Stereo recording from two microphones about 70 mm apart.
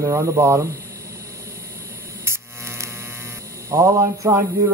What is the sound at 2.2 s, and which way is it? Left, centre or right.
Hum, right.